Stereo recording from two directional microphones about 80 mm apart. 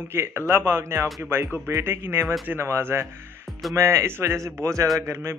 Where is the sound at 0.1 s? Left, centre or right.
Right.